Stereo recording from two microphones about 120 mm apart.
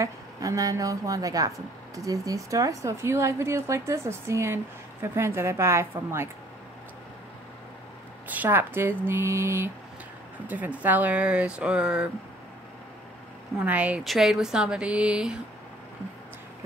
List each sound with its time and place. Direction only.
0.0 s a woman's voice: 30° right (ahead or behind)
8.3 s a woman's voice: 15° right (ahead or behind)
13.6 s speech: 10° right (ahead or behind)